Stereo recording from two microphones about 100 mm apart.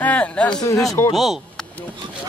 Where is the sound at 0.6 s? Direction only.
35° left (ahead or behind).